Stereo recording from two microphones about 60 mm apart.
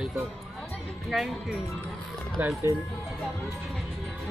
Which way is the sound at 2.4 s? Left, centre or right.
Right.